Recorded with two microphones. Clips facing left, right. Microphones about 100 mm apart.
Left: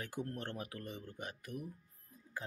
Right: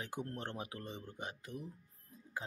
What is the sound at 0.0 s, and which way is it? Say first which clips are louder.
Speech: even; 20° right (ahead or behind).